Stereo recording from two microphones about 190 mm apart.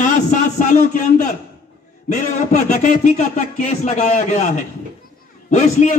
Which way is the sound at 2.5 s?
40° left (ahead or behind).